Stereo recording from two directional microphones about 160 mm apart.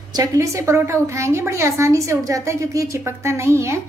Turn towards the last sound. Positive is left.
turn(degrees=-15)  # may be behind; listen again after turning